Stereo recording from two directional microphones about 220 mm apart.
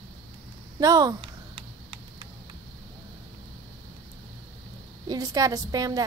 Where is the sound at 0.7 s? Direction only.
15° right (ahead or behind).